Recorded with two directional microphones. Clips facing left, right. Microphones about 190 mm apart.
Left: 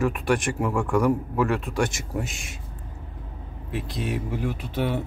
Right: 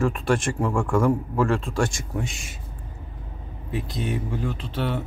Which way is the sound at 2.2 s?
Centre (ahead or behind).